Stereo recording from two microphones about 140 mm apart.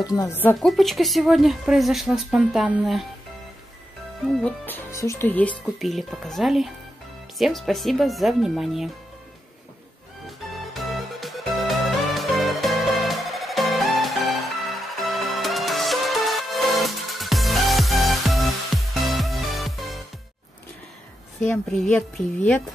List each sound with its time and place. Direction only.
0.0 s speech: 25° left (ahead or behind)
0.6 s a woman's voice: centre (ahead or behind)
4.4 s a woman's voice: 10° left (ahead or behind)
10.2 s music: centre (ahead or behind)
21.7 s a woman's voice: 5° left (ahead or behind)